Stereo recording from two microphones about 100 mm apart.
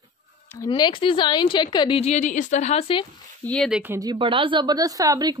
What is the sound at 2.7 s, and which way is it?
Speech, 90° left.